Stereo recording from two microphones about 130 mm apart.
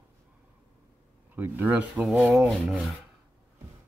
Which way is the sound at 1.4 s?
15° right (ahead or behind).